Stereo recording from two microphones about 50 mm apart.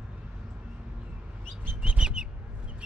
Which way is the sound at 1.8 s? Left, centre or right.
Centre.